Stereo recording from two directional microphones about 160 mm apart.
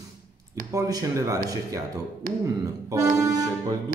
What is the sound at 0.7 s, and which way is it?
Speech, 20° right (ahead or behind).